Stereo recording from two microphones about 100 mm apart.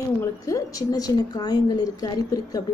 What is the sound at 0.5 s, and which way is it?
A woman's voice, 35° left (ahead or behind).